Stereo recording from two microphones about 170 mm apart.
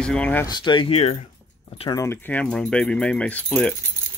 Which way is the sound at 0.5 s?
25° left (ahead or behind).